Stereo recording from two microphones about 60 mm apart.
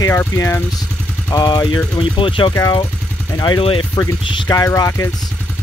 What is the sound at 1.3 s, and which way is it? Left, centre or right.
Speech, left.